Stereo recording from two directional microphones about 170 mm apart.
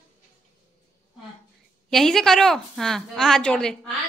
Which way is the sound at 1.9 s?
Centre (ahead or behind).